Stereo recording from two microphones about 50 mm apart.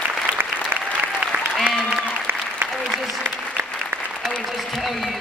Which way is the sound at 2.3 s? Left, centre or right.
Right.